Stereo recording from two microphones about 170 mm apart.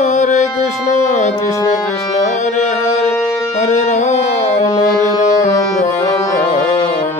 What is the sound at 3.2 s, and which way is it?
Music, 20° left (ahead or behind).